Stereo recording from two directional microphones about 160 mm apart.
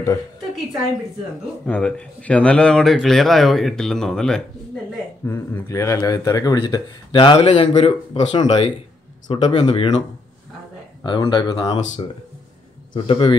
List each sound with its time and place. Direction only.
1.7 s a man's voice: 5° left (ahead or behind)
5.2 s speech: 15° left (ahead or behind); by 8.7 s 40° left (ahead or behind)
9.3 s speech: 30° left (ahead or behind)
11.1 s speech: 30° left (ahead or behind)